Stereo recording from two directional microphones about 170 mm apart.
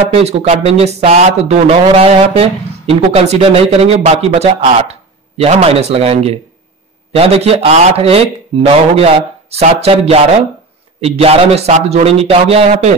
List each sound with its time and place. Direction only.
0.1 s speech: 40° right (ahead or behind)